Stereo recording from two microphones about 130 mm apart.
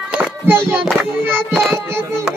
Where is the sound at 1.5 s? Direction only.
Centre (ahead or behind).